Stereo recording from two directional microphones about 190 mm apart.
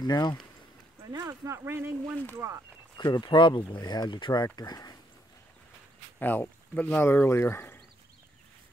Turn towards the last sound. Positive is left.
turn(degrees=10)  # may be behind; listen again after turning